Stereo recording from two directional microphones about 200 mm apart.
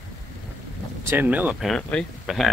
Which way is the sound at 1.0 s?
10° right (ahead or behind).